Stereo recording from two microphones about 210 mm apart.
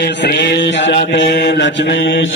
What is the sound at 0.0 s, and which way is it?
Mantra, 50° left (ahead or behind).